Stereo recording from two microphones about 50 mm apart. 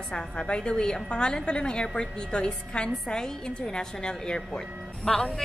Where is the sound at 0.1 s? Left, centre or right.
Centre.